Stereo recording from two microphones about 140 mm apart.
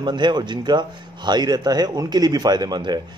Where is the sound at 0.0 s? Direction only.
30° right (ahead or behind).